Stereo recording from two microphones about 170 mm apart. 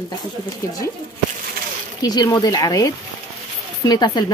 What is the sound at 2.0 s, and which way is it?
Speech, 25° left (ahead or behind).